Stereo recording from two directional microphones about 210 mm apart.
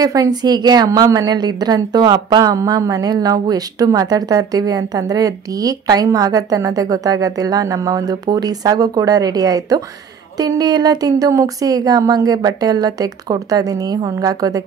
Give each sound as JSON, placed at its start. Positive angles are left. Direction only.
{"t": 0.0, "sound": "a woman's voice", "side_deg": -15}